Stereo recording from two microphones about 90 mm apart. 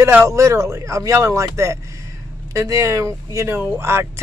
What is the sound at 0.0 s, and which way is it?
Speech, 30° right (ahead or behind).